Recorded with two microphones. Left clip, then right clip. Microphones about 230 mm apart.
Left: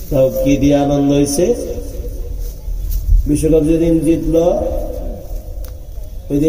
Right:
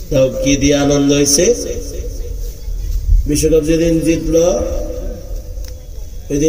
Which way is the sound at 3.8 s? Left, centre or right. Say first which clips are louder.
Even; right.